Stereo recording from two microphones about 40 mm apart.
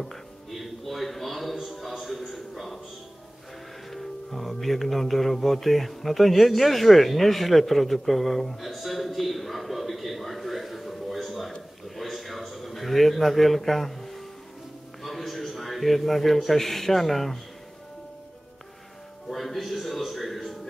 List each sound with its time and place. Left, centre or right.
0.0 s music: centre
3.9 s speech: centre
12.0 s a sound: centre
15.0 s a man's voice: centre
19.2 s music: centre